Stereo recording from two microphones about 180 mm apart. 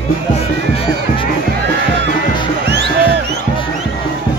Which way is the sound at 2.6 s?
70° right (ahead or behind).